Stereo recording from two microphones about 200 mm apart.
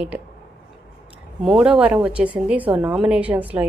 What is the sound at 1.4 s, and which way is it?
A woman's voice, 5° right (ahead or behind).